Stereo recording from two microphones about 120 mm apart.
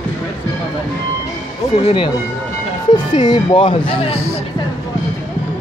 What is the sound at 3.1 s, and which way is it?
Speech, 40° left (ahead or behind).